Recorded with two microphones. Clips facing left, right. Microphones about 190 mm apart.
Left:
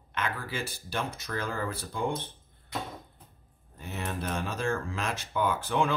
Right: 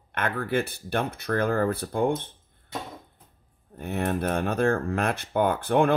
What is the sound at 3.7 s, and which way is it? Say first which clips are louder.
Speech: right 9 dB; 55° right (ahead or behind).